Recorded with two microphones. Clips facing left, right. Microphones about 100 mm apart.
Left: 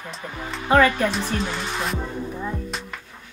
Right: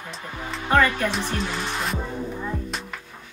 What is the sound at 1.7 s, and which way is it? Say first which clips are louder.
Music: left 1 dB; centre (ahead or behind).